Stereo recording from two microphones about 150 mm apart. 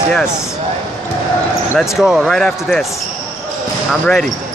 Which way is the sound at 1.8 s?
Centre (ahead or behind).